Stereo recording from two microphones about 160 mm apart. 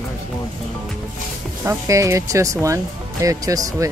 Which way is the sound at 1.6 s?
20° right (ahead or behind).